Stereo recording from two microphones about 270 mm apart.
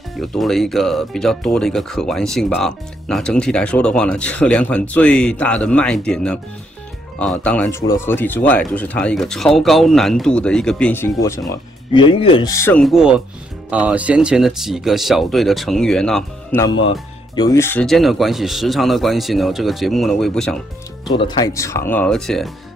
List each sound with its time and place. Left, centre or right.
0.1 s speech: centre
21.1 s speech: centre